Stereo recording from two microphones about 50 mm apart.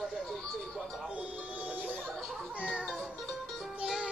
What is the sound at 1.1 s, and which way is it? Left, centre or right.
Music, right.